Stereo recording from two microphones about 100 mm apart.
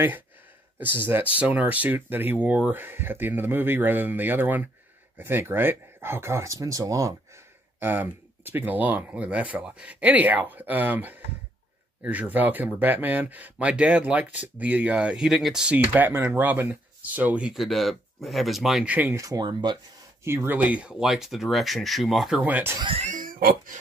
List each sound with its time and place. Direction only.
0.7 s speech: 20° right (ahead or behind)
7.8 s speech: 20° right (ahead or behind)
15.9 s speech: 20° right (ahead or behind)
17.5 s speech: centre (ahead or behind)
18.9 s speech: 15° right (ahead or behind)
19.1 s speech: 35° right (ahead or behind)
20.2 s speech: 20° right (ahead or behind)
21.0 s speech: 5° right (ahead or behind)
22.4 s speech: 20° right (ahead or behind)